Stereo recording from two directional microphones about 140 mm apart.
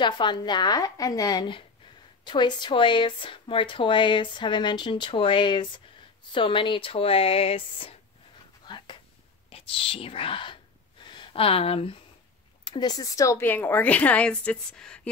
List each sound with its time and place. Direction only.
0.0 s a woman's voice: 35° left (ahead or behind)
8.6 s a sound: 35° left (ahead or behind)
9.5 s a woman's voice: 40° left (ahead or behind)
12.6 s a woman's voice: 30° left (ahead or behind); by 15.0 s 5° left (ahead or behind)